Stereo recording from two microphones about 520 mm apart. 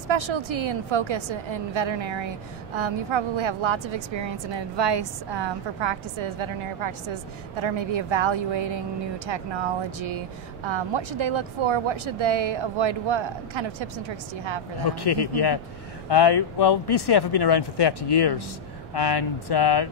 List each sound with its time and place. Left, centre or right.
0.1 s a woman's voice: right
10.7 s a woman's voice: right
14.9 s speech: left